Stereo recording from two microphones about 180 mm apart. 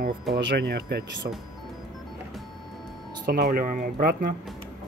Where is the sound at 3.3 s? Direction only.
55° right (ahead or behind).